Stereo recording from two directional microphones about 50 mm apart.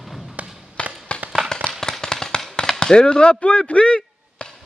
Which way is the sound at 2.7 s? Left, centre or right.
Centre.